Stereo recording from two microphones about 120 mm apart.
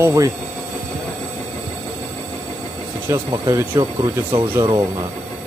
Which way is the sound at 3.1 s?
35° right (ahead or behind).